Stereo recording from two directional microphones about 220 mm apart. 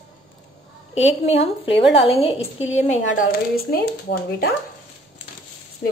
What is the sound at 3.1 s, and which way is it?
Speech, 45° left (ahead or behind).